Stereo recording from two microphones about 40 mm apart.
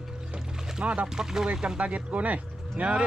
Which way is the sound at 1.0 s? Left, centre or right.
Centre.